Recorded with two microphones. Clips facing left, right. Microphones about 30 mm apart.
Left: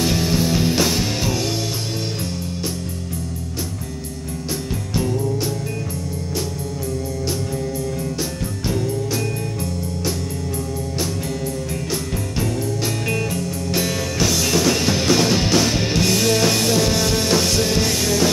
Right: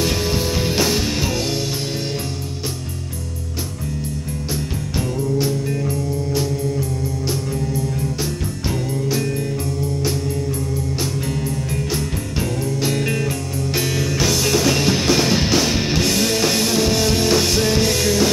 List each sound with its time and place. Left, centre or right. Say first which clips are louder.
0.0 s music: left 1 dB; centre
12.4 s music: right 1 dB; centre